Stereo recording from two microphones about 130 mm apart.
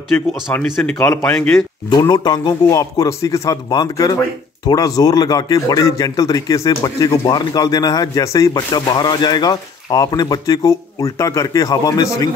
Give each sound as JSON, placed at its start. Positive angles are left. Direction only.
{"t": 0.5, "sound": "speech", "side_deg": 5}
{"t": 1.9, "sound": "speech", "side_deg": 35}